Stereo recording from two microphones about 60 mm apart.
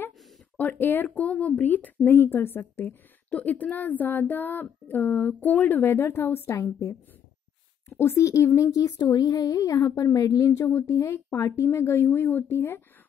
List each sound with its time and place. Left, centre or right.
0.6 s speech: left
1.1 s speech: left
3.3 s speech: left
8.0 s speech: left
8.7 s speech: left
10.7 s speech: left